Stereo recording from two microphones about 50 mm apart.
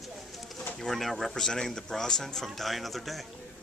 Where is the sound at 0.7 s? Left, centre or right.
Centre.